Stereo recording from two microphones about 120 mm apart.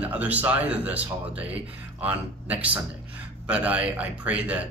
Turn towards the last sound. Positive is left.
turn(degrees=-10)  # may be behind; listen again after turning